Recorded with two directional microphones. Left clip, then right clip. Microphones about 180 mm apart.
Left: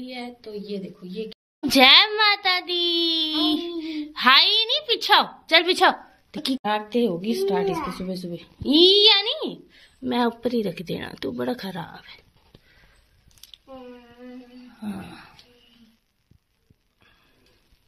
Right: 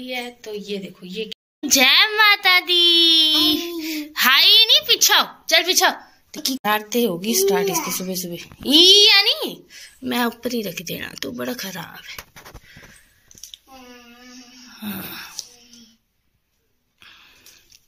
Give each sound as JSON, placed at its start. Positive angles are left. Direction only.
{"t": 0.0, "sound": "a child's voice", "side_deg": 0}
{"t": 3.3, "sound": "a child's voice", "side_deg": 15}
{"t": 4.9, "sound": "a woman's voice", "side_deg": 25}
{"t": 5.5, "sound": "a woman's voice", "side_deg": 40}
{"t": 6.6, "sound": "a child's voice", "side_deg": 5}
{"t": 14.7, "sound": "a sound", "side_deg": 5}
{"t": 17.0, "sound": "a sound", "side_deg": 0}